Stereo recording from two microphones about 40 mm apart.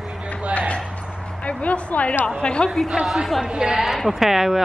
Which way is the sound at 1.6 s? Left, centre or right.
Left.